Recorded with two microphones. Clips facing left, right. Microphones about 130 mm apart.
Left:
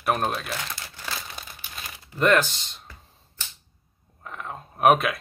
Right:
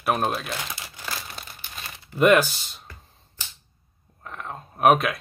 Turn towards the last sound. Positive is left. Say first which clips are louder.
# even
turn(degrees=0)  # may be behind; listen again after turning